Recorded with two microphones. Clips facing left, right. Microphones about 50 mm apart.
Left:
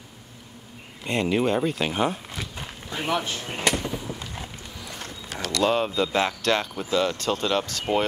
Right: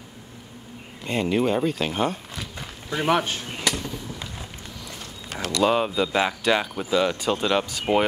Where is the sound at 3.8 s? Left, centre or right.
Centre.